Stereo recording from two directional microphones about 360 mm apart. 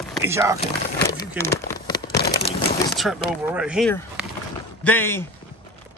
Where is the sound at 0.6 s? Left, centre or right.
Centre.